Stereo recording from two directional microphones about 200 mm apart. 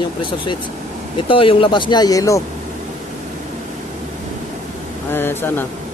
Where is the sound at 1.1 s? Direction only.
25° left (ahead or behind).